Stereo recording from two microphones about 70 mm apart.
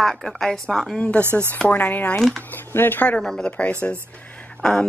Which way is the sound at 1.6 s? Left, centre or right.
Left.